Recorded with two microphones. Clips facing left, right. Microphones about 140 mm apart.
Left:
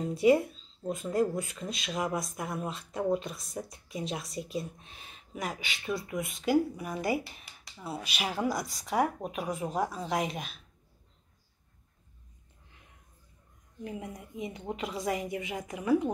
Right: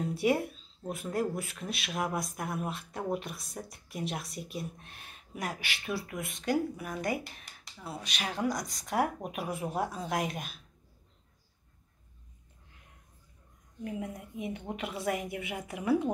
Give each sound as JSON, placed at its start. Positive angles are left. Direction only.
{"t": 0.0, "sound": "speech", "side_deg": 0}
{"t": 13.8, "sound": "speech", "side_deg": 0}